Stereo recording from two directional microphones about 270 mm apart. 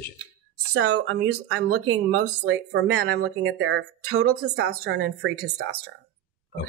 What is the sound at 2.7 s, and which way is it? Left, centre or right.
Speech, right.